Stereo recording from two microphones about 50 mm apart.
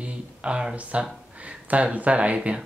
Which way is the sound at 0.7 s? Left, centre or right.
Right.